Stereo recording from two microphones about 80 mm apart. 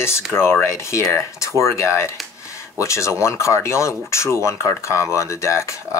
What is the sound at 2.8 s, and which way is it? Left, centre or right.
Speech, left.